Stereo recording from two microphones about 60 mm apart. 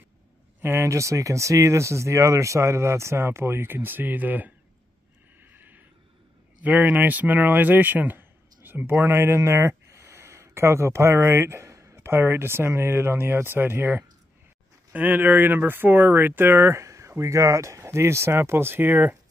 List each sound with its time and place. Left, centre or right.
0.6 s speech: right
5.4 s a sound: right
6.6 s speech: right
14.9 s speech: right